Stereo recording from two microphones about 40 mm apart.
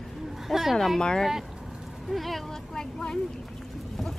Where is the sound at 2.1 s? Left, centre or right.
Centre.